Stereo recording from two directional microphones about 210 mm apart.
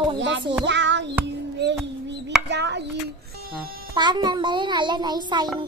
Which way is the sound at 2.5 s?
55° right (ahead or behind).